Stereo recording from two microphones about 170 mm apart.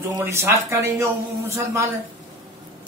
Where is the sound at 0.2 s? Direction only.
15° right (ahead or behind).